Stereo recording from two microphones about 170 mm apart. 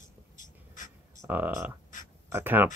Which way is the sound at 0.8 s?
50° left (ahead or behind).